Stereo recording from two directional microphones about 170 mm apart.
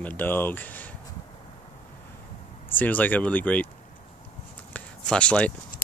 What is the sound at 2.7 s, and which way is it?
Speech, 10° left (ahead or behind).